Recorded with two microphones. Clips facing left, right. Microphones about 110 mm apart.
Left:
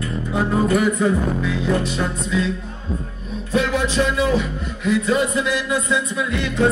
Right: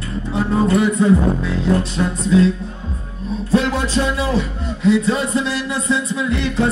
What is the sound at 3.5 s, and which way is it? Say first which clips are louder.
Speech: right 1 dB; 35° right (ahead or behind).